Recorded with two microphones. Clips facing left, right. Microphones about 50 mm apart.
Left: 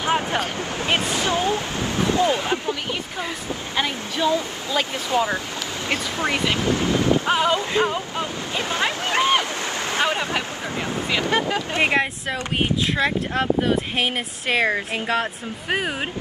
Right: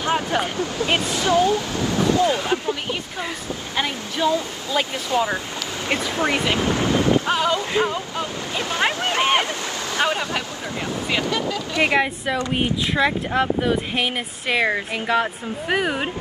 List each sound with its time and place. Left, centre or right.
0.0 s a sound: left
0.6 s speech: left
3.7 s speech: centre
4.7 s speech: centre
5.1 s a sound: centre
5.9 s speech: right
7.2 s a sound: centre
7.9 s speech: left
8.7 s speech: right
9.2 s a sound: right
9.8 s speech: left
11.9 s speech: centre